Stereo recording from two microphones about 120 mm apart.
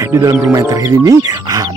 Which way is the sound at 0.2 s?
20° right (ahead or behind).